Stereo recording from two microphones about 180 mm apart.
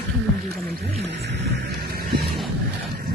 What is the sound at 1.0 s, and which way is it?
Vehicle, 75° right (ahead or behind).